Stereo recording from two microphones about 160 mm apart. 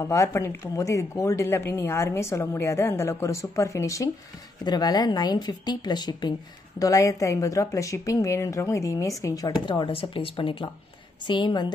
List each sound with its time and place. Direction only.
0.0 s a woman's voice: 20° left (ahead or behind)